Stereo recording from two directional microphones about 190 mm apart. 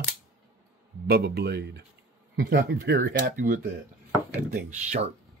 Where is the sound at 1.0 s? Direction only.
55° right (ahead or behind).